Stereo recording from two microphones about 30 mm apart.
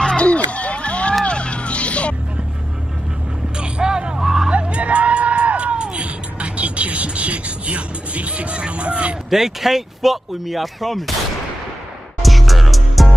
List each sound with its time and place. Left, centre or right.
0.2 s a sound: left
1.2 s music: left
3.5 s vehicle: right
4.2 s music: centre
4.5 s music: right
9.3 s speech: centre
12.2 s music: centre